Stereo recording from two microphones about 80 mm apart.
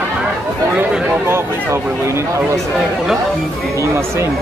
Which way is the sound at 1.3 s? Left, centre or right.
Right.